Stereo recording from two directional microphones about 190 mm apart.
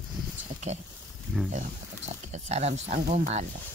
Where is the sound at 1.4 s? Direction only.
35° right (ahead or behind).